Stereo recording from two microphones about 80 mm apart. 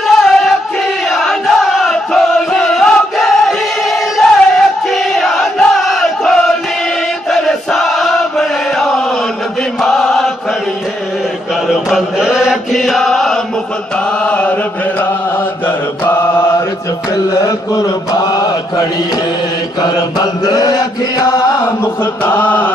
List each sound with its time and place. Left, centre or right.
0.2 s music: centre
1.1 s battle cry: centre
7.2 s chant: centre
11.7 s chant: centre
14.2 s chant: centre
18.1 s mantra: left
22.2 s mantra: left